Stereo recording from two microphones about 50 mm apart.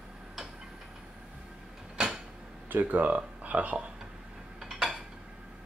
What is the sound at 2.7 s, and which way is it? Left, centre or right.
Speech, right.